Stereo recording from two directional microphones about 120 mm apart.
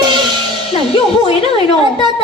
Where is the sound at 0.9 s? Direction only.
50° left (ahead or behind).